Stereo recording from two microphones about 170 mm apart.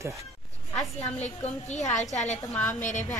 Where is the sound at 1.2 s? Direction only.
40° left (ahead or behind).